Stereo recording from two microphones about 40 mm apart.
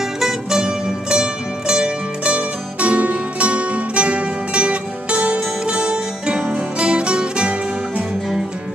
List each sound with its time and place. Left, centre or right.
0.6 s zither: right
6.8 s music: right